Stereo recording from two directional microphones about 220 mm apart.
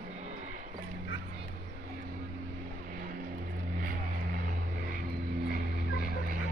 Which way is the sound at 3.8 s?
40° right (ahead or behind).